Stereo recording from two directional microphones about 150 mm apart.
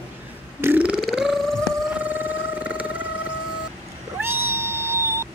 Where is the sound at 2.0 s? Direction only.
10° right (ahead or behind).